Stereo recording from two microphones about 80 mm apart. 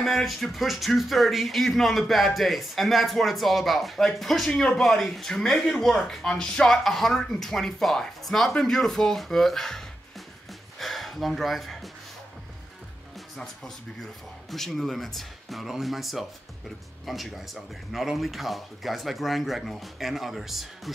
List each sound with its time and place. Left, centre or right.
0.0 s speech: centre
10.8 s a sound: centre
14.5 s speech: centre